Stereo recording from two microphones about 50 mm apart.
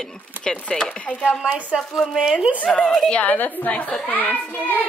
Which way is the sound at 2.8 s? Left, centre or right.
Centre.